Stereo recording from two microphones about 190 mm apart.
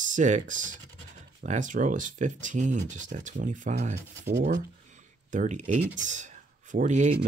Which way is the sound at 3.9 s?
60° right (ahead or behind).